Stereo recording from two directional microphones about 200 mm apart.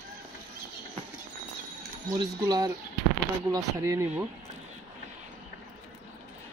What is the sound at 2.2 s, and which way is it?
Speech, 20° right (ahead or behind).